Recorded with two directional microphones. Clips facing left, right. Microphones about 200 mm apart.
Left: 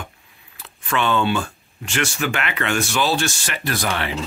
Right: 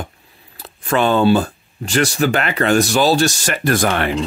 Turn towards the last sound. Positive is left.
turn(degrees=-50)  # may be behind; listen again after turning